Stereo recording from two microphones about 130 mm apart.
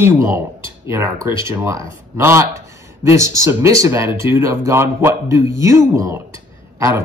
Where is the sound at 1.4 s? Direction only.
20° right (ahead or behind).